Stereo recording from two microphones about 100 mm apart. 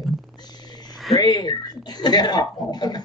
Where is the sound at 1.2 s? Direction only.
45° left (ahead or behind).